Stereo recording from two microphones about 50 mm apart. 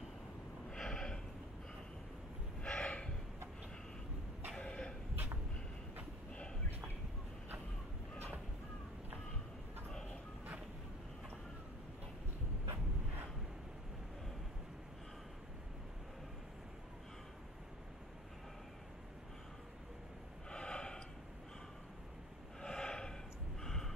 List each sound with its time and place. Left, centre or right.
0.7 s snort: centre
2.6 s gasp: left
4.6 s a sound: left
20.4 s gasp: centre
22.6 s snort: centre
23.6 s a sound: centre